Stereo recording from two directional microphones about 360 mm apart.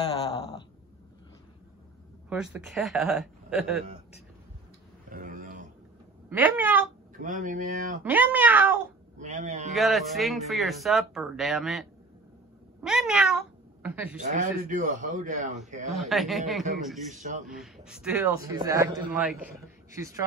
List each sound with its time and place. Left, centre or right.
2.2 s speech: centre
5.1 s a sound: right
6.3 s speech: centre
7.2 s a man's voice: right
8.0 s speech: centre
9.2 s a man's voice: centre
9.8 s speech: centre
14.3 s a man's voice: right
15.9 s speech: centre
17.1 s a man's voice: centre
17.5 s a man's voice: centre